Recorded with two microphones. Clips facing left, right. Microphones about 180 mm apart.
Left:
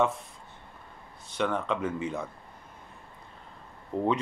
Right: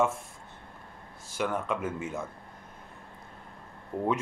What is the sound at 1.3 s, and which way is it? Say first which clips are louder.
Speech: left 2 dB; 5° right (ahead or behind).